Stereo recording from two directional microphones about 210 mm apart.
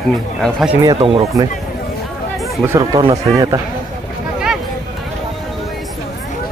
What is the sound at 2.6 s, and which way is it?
Speech, 10° right (ahead or behind).